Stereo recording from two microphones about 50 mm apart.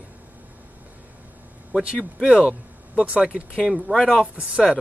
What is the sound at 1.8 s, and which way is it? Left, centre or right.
Speech, centre.